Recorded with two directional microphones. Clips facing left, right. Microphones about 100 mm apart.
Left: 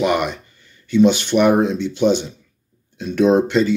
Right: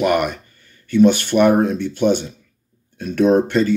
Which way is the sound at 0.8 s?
20° left (ahead or behind).